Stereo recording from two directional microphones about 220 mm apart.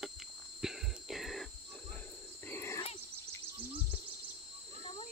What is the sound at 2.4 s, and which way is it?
Wild animals, 10° left (ahead or behind).